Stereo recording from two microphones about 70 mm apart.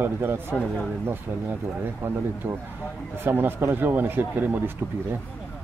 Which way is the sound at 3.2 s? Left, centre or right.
Right.